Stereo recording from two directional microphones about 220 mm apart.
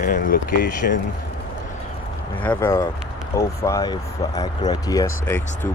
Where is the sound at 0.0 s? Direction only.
40° left (ahead or behind).